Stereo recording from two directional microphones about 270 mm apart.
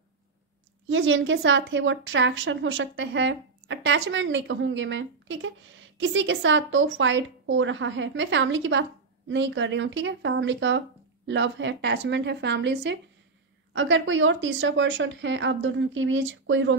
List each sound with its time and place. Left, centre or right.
0.8 s a woman's voice: right